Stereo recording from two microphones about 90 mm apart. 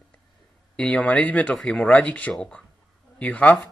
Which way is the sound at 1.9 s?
15° left (ahead or behind).